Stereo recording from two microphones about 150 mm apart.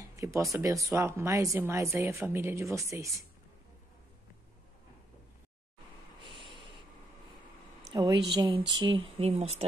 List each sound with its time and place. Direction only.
0.1 s speech: 20° right (ahead or behind)
7.9 s speech: 25° right (ahead or behind); by 9.7 s 45° right (ahead or behind)